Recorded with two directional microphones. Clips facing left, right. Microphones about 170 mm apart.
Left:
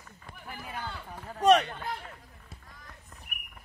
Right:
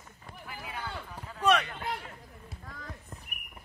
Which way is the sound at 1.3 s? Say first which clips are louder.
Left 5 dB; 40° left (ahead or behind).